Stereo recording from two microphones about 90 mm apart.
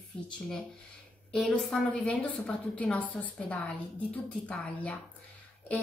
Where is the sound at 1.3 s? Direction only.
10° left (ahead or behind).